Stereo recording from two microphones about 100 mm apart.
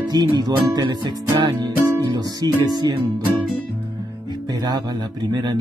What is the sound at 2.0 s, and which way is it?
Speech, 45° right (ahead or behind).